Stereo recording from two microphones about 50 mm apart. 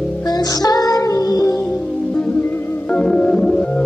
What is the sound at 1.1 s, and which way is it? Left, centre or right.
Music, left.